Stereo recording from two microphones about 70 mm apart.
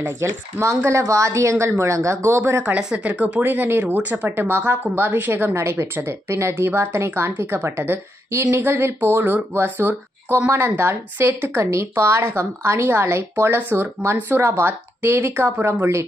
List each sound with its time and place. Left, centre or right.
0.0 s speech: right
2.8 s speech: centre
5.5 s speech: right